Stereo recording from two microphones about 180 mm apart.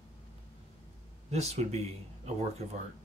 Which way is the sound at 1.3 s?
35° right (ahead or behind).